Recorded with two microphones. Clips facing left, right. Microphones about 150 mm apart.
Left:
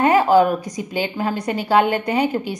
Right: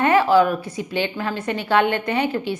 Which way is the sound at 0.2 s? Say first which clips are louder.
Left 2 dB; 45° left (ahead or behind).